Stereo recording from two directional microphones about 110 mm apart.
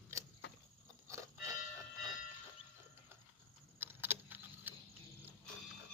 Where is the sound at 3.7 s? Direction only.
20° right (ahead or behind).